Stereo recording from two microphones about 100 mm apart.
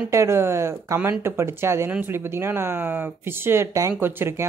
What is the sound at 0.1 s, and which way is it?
Speech, 25° right (ahead or behind).